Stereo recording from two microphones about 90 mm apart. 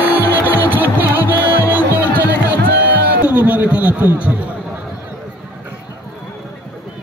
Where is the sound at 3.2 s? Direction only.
15° right (ahead or behind).